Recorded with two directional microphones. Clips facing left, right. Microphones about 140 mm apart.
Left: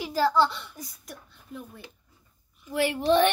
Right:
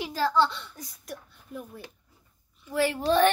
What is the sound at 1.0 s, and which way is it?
Speech, 5° right (ahead or behind).